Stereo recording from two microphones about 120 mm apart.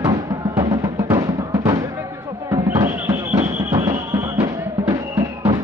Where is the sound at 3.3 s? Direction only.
30° right (ahead or behind).